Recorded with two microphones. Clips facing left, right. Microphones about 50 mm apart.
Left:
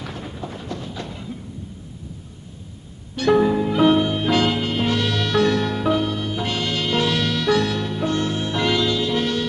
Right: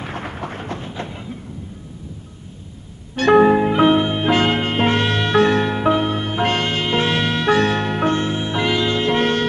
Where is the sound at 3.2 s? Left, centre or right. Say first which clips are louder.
Right 5 dB; right.